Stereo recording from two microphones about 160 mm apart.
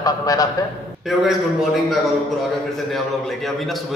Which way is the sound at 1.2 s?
Centre (ahead or behind).